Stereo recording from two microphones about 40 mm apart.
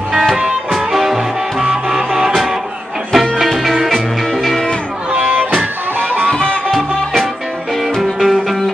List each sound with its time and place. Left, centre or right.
0.7 s music: centre
5.1 s music: right
5.9 s music: right
6.2 s music: left
8.0 s music: centre